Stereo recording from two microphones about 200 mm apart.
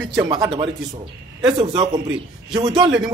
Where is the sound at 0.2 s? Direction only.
20° right (ahead or behind).